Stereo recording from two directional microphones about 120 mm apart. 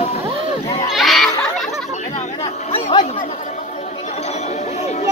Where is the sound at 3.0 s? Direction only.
60° left (ahead or behind).